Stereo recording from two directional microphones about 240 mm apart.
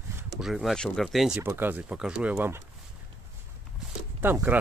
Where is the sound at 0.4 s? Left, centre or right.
Centre.